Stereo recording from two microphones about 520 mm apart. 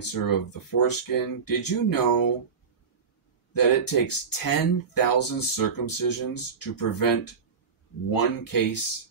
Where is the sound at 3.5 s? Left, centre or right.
Left.